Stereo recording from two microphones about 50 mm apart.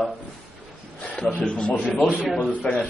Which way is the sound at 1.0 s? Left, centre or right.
Centre.